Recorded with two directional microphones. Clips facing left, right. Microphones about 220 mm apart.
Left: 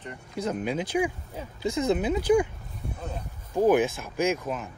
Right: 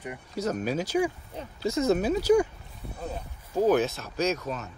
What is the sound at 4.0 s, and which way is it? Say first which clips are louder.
Speech: left 1 dB; 10° left (ahead or behind).